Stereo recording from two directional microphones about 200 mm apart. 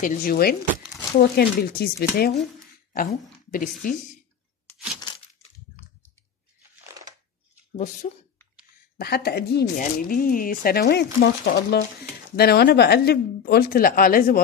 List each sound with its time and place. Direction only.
0.0 s a woman's voice: 45° left (ahead or behind)
6.9 s a sound: 15° right (ahead or behind)
7.7 s speech: 35° left (ahead or behind)
8.9 s speech: 50° left (ahead or behind)